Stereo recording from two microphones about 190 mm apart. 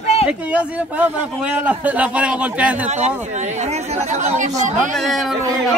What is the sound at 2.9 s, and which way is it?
Speech, 40° right (ahead or behind).